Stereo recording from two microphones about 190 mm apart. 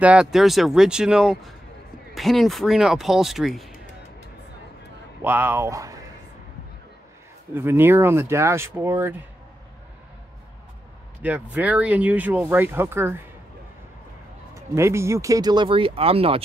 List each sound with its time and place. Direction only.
0.0 s speech: 5° right (ahead or behind)
5.2 s speech: 10° right (ahead or behind)
7.5 s speech: 10° right (ahead or behind)
11.2 s speech: 10° right (ahead or behind)
14.5 s speech: 15° right (ahead or behind); by 16.4 s 30° right (ahead or behind)